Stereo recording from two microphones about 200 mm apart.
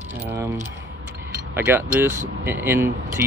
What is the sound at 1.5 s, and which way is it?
Speech, 10° right (ahead or behind).